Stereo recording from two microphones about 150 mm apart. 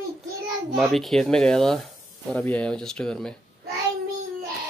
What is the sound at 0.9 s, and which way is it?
Speech, centre (ahead or behind).